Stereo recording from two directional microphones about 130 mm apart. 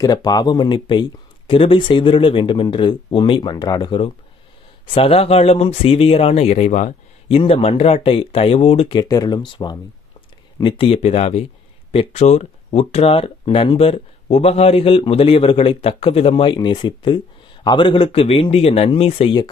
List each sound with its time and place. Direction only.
0.0 s speech: 30° left (ahead or behind)
4.9 s speech: 50° left (ahead or behind); by 7.3 s 65° left (ahead or behind)
7.3 s speech: 50° left (ahead or behind)
9.0 s speech: 30° left (ahead or behind); by 19.3 s 50° left (ahead or behind)